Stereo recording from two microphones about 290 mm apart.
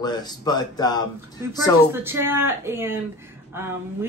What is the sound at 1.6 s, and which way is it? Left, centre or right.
Speech, centre.